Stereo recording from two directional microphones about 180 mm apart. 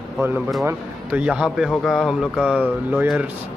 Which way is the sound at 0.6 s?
10° right (ahead or behind).